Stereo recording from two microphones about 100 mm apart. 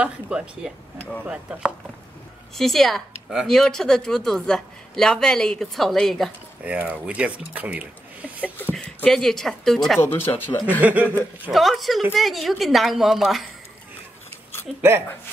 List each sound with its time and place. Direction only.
0.0 s speech: 10° right (ahead or behind)
2.5 s a woman's voice: 5° left (ahead or behind)
6.6 s speech: 15° right (ahead or behind)
8.7 s speech: 10° left (ahead or behind)
9.9 s speech: 20° left (ahead or behind)
10.8 s speech: 15° right (ahead or behind)
11.5 s speech: centre (ahead or behind)
14.8 s speech: 25° right (ahead or behind)